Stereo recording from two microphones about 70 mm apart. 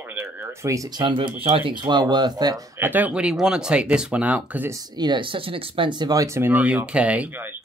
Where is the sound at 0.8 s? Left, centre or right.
Right.